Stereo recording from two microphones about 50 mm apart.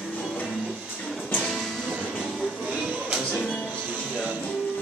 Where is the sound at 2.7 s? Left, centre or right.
Right.